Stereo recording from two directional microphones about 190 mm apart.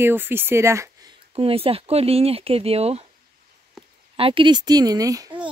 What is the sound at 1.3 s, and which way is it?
Speech, 30° right (ahead or behind).